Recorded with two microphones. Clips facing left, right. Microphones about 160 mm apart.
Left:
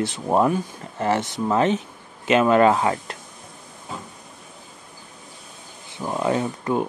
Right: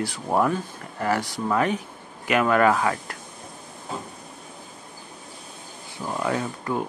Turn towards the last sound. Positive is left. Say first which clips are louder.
# left 4 dB
turn(degrees=20)  # may be behind; listen again after turning